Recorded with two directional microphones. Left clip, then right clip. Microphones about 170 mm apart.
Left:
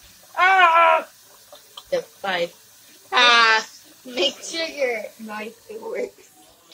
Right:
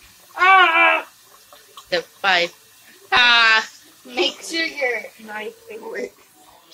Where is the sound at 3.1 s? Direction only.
10° left (ahead or behind).